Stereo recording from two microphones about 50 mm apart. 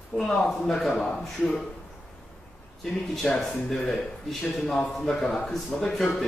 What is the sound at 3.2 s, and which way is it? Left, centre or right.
Speech, centre.